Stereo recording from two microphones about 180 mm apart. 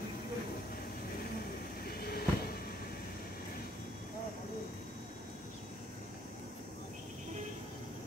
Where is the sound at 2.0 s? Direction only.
60° left (ahead or behind).